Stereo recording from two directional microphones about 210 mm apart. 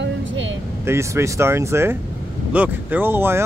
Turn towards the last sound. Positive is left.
turn(degrees=-10)  # may be behind; listen again after turning